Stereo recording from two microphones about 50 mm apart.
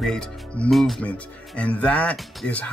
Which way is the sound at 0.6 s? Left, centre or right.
Centre.